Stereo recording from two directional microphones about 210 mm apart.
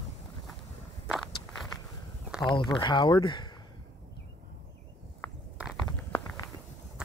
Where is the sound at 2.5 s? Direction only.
20° left (ahead or behind).